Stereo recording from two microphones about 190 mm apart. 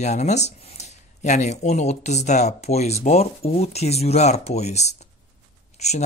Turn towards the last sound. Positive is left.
turn(degrees=35)  # may be behind; listen again after turning